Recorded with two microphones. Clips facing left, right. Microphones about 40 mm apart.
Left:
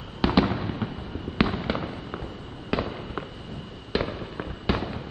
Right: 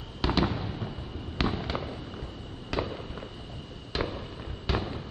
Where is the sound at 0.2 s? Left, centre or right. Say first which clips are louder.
Left 5 dB; centre.